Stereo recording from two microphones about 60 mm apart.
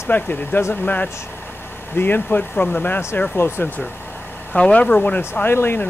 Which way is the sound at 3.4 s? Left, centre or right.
Left.